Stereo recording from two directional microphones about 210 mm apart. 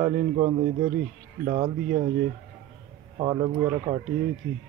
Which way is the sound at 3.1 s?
20° right (ahead or behind).